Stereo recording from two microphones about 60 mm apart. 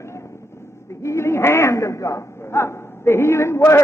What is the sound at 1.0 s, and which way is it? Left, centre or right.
A man's voice, left.